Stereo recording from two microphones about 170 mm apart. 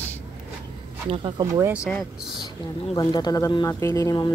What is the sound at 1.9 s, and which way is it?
Speech, centre (ahead or behind).